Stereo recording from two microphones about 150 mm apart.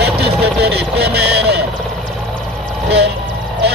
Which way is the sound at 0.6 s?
90° right.